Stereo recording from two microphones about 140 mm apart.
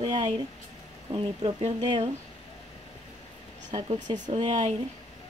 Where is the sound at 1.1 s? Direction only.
45° right (ahead or behind).